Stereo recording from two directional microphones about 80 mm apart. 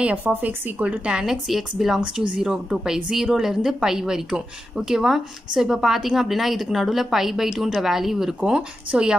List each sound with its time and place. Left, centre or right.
0.0 s a woman's voice: right